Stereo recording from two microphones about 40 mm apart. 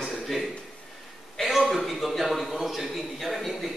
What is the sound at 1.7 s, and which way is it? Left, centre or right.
A man's voice, centre.